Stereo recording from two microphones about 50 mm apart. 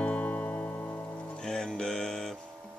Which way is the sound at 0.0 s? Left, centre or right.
Left.